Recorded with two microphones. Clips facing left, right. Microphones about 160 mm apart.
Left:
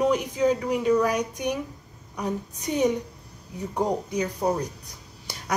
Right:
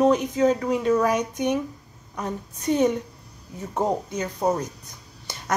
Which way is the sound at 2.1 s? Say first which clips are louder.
Left 1 dB; 15° left (ahead or behind).